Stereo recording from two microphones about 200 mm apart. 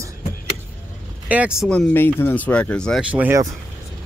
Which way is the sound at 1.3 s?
5° right (ahead or behind).